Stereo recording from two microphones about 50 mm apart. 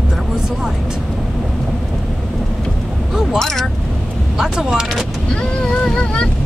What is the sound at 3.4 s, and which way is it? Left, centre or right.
Vehicle, centre.